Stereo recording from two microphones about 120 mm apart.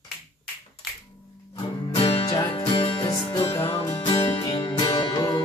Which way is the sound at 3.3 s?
20° left (ahead or behind).